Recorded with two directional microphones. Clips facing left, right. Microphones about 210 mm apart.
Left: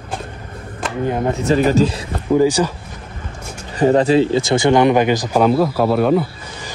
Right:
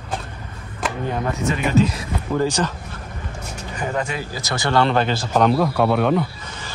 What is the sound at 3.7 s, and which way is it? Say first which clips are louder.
Speech: left 13 dB; 35° left (ahead or behind).